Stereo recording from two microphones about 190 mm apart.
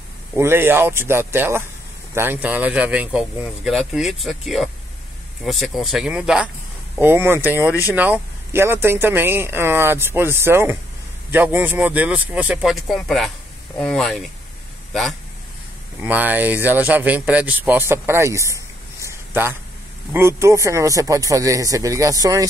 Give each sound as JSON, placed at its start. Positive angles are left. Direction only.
{"t": 0.4, "sound": "a man's voice", "side_deg": -10}
{"t": 20.1, "sound": "speech", "side_deg": -15}